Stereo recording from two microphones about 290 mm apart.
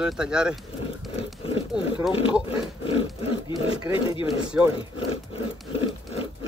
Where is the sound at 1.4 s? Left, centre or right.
Centre.